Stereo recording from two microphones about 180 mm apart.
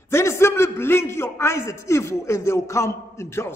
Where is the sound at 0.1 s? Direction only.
15° left (ahead or behind).